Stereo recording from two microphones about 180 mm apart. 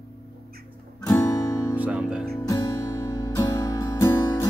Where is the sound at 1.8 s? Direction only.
5° right (ahead or behind).